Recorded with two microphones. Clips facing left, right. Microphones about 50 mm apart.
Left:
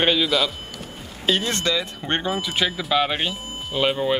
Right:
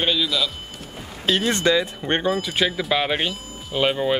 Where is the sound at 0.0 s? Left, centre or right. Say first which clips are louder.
Left 2 dB; left.